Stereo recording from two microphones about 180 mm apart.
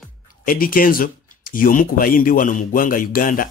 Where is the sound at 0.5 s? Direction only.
50° left (ahead or behind).